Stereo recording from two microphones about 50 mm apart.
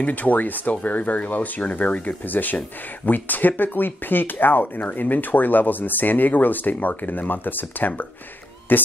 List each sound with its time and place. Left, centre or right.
0.0 s speech: left